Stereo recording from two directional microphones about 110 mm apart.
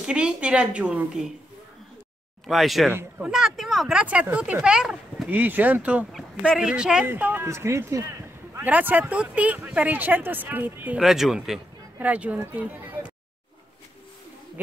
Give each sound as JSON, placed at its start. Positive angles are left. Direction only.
{"t": 0.0, "sound": "speech", "side_deg": -10}
{"t": 2.4, "sound": "speech", "side_deg": 0}
{"t": 6.1, "sound": "speech", "side_deg": 0}
{"t": 7.4, "sound": "a sound", "side_deg": -25}
{"t": 8.6, "sound": "speech", "side_deg": -15}
{"t": 11.0, "sound": "speech", "side_deg": -5}